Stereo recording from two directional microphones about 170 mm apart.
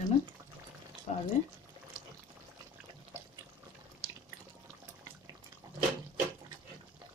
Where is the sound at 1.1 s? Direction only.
45° left (ahead or behind).